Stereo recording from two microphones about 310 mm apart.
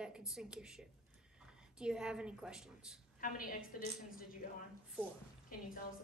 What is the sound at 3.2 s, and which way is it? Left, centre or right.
A woman's voice, left.